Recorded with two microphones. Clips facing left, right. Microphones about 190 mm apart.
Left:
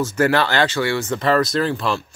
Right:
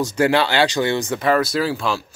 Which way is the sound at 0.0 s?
15° right (ahead or behind).